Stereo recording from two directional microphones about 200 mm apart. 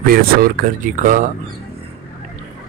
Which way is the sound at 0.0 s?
45° right (ahead or behind).